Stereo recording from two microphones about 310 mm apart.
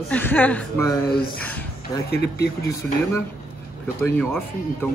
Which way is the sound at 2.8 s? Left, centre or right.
Centre.